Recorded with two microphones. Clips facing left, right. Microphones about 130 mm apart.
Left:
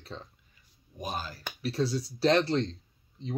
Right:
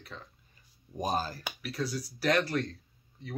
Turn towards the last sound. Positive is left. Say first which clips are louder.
# left 5 dB
turn(degrees=20)  # may be behind; listen again after turning